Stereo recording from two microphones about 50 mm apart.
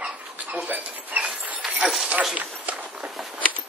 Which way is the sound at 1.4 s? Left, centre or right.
Right.